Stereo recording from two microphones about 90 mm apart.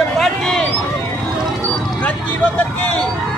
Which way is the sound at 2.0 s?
20° left (ahead or behind).